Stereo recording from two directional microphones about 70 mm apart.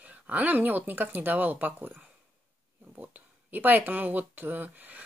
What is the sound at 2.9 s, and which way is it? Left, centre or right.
Speech, right.